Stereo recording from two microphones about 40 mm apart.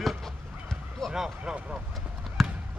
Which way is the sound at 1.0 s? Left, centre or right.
Centre.